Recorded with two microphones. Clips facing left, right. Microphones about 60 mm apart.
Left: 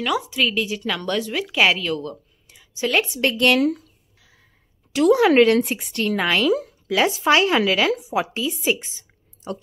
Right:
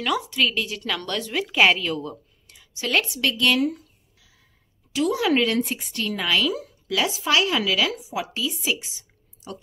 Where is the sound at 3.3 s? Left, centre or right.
Left.